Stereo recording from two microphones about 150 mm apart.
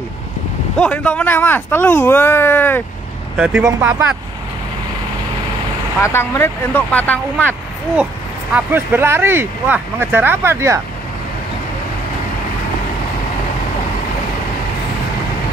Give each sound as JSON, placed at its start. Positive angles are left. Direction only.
{"t": 0.7, "sound": "speech", "side_deg": 10}
{"t": 3.3, "sound": "speech", "side_deg": -5}
{"t": 6.0, "sound": "speech", "side_deg": 15}
{"t": 8.5, "sound": "speech", "side_deg": -15}